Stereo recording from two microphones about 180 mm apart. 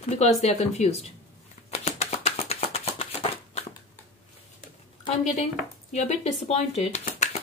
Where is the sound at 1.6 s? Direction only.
35° left (ahead or behind).